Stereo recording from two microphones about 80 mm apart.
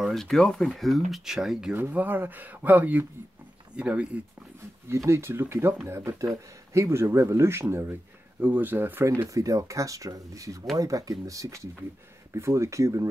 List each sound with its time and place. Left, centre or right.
0.1 s speech: centre
1.7 s speech: right
4.6 s speech: right
8.4 s speech: right
9.0 s speech: right